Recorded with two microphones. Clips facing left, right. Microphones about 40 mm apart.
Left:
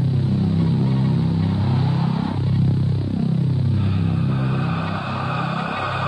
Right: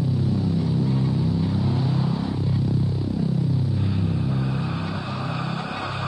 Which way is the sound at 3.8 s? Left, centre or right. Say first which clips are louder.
Left 3 dB; left.